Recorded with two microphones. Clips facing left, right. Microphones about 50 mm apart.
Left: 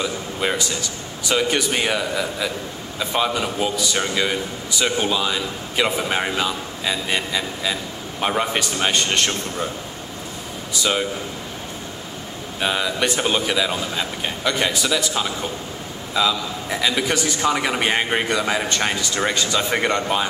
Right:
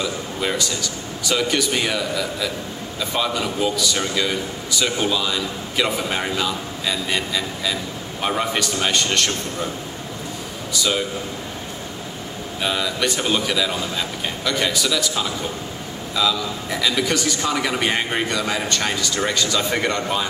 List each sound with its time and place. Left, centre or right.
0.0 s a man's voice: centre
10.8 s a man's voice: centre
12.5 s a man's voice: centre